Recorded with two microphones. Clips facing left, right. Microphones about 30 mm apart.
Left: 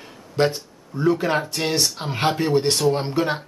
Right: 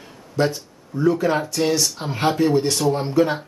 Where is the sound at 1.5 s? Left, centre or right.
Left.